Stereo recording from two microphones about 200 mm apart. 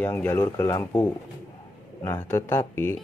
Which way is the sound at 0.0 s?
10° left (ahead or behind).